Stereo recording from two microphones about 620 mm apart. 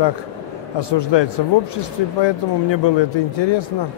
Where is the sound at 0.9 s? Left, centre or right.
Left.